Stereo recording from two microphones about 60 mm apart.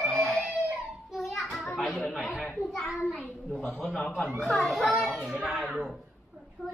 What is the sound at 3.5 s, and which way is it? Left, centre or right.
Speech, centre.